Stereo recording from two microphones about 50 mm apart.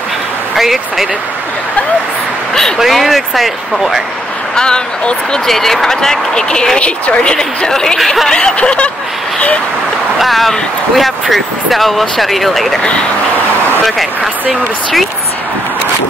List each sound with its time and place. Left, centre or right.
0.6 s speech: centre
2.8 s speech: centre
4.6 s speech: centre
8.0 s speech: centre
8.3 s snicker: centre
10.1 s speech: centre
13.8 s speech: centre